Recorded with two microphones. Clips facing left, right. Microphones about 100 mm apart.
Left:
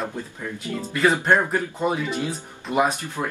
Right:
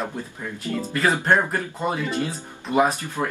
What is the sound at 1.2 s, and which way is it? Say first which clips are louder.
A man's voice: left 1 dB; centre (ahead or behind).